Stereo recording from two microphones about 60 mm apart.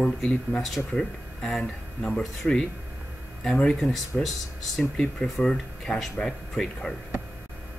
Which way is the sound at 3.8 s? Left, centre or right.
Centre.